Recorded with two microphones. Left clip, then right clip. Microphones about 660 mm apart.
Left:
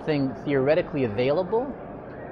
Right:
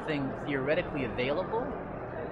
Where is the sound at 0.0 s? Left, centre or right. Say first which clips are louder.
Left 7 dB; left.